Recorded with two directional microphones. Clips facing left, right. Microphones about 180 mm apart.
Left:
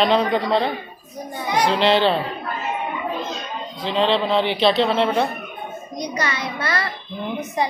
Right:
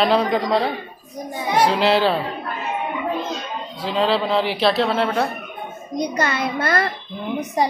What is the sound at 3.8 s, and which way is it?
A woman's voice, 5° right (ahead or behind).